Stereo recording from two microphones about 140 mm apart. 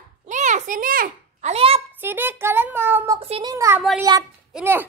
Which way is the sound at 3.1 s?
45° right (ahead or behind).